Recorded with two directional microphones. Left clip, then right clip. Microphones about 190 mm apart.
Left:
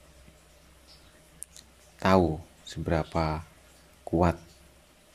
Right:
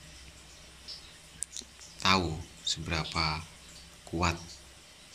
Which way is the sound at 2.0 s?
45° left (ahead or behind).